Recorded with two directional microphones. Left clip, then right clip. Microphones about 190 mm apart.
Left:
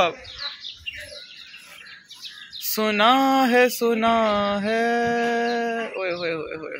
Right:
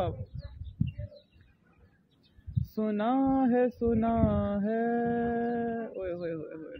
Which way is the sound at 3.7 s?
20° left (ahead or behind).